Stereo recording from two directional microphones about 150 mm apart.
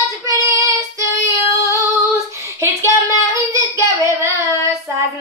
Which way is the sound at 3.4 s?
20° right (ahead or behind).